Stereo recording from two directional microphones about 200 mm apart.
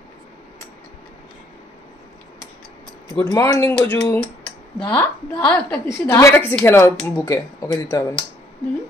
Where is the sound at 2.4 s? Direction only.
15° right (ahead or behind).